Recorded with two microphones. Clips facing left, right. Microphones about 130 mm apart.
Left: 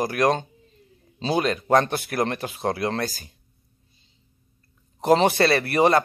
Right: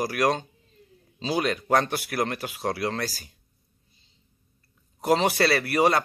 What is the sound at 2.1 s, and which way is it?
Speech, 30° left (ahead or behind).